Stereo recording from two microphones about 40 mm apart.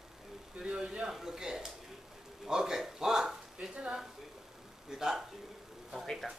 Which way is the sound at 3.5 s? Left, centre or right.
Right.